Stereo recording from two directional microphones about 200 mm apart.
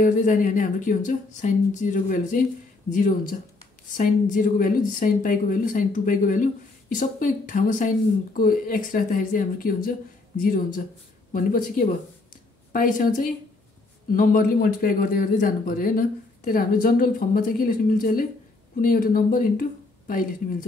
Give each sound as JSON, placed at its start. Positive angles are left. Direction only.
{"t": 0.0, "sound": "speech", "side_deg": 40}
{"t": 11.3, "sound": "speech", "side_deg": 45}